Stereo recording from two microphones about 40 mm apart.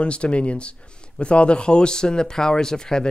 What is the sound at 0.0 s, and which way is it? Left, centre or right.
A man's voice, left.